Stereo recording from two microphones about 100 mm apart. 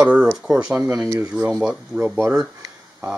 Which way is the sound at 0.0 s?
10° right (ahead or behind).